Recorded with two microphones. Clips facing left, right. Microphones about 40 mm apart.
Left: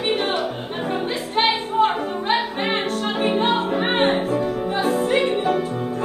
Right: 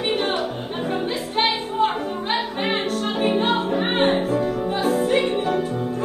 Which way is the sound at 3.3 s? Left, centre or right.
Centre.